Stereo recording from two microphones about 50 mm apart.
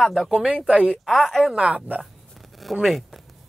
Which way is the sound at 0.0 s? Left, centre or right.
Centre.